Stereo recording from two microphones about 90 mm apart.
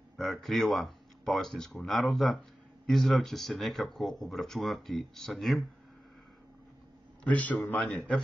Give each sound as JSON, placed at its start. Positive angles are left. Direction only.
{"t": 0.2, "sound": "speech", "side_deg": 0}
{"t": 7.2, "sound": "a man's voice", "side_deg": 15}